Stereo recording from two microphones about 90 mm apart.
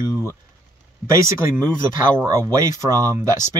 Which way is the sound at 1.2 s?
35° right (ahead or behind).